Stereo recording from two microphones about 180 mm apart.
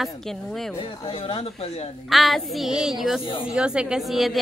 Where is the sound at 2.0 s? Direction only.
Centre (ahead or behind).